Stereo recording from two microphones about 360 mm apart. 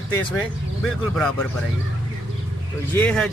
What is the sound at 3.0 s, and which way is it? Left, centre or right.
Speech, centre.